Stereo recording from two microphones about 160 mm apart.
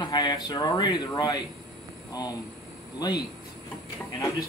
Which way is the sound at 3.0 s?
25° left (ahead or behind).